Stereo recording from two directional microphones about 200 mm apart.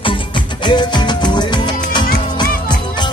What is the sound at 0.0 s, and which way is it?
Music, 25° left (ahead or behind).